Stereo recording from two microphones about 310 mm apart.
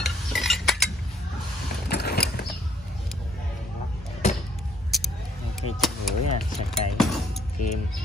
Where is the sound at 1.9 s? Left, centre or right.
Left.